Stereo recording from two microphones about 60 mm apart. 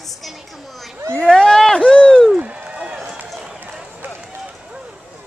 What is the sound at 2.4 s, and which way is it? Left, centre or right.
Run, centre.